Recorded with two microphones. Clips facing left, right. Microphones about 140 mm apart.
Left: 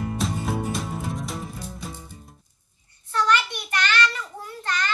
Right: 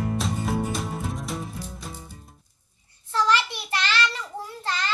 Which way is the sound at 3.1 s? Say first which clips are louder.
Even; 30° right (ahead or behind).